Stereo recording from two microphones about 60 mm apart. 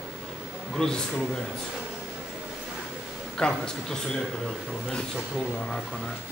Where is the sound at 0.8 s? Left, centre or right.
Centre.